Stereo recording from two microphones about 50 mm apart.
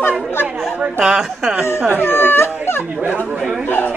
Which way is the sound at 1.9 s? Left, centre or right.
Left.